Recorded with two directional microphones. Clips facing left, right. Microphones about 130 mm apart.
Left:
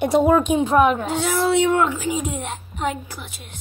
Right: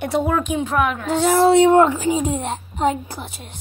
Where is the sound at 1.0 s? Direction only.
40° right (ahead or behind).